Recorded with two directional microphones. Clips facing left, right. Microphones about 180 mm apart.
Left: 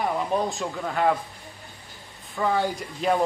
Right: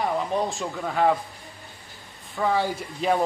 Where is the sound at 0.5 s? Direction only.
Centre (ahead or behind).